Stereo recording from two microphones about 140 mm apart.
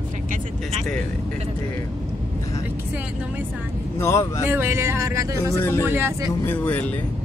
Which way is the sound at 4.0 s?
20° left (ahead or behind).